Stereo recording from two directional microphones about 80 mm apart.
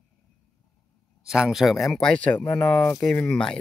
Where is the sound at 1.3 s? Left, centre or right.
Centre.